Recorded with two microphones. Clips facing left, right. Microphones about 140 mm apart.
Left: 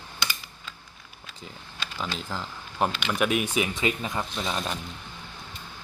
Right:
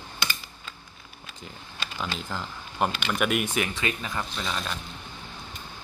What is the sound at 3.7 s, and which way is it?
Speech, 20° left (ahead or behind).